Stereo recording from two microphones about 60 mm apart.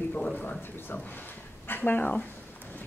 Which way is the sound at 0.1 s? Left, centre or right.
Left.